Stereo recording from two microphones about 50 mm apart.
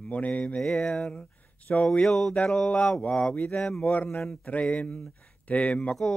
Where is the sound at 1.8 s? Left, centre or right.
Centre.